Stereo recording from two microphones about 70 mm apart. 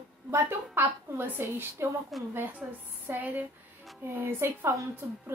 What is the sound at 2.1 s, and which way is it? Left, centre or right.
Speech, centre.